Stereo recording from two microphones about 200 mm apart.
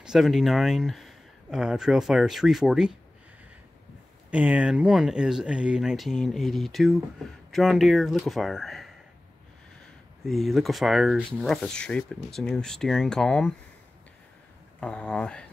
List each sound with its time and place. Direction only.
0.0 s speech: centre (ahead or behind)
4.3 s speech: 5° right (ahead or behind)
10.2 s speech: centre (ahead or behind)
14.8 s speech: 5° left (ahead or behind)